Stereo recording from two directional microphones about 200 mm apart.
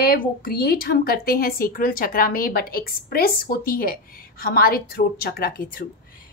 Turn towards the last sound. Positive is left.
turn(degrees=45)  # may be behind; listen again after turning